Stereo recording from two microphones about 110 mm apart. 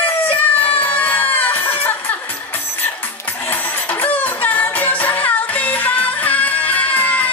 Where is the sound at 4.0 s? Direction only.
15° left (ahead or behind).